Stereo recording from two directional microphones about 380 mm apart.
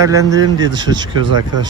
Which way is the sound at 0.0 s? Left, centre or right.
Centre.